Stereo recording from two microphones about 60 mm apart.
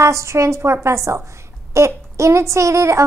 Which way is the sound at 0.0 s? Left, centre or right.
Right.